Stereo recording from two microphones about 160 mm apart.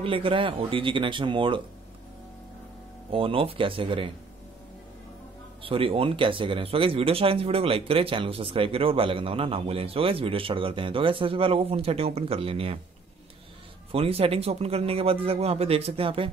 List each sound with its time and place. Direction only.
0.0 s speech: 35° right (ahead or behind)
3.1 s speech: 35° right (ahead or behind)
5.6 s speech: 35° right (ahead or behind)
13.9 s speech: 35° right (ahead or behind)